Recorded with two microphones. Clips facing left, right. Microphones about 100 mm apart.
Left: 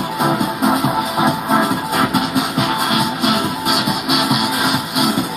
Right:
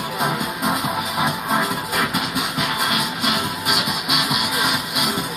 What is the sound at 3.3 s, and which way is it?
Music, 40° left (ahead or behind).